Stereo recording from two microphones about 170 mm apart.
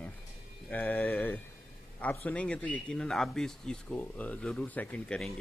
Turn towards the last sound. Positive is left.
turn(degrees=5)  # may be behind; listen again after turning